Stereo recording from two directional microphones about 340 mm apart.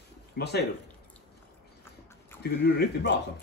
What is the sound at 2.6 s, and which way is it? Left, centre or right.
Speech, left.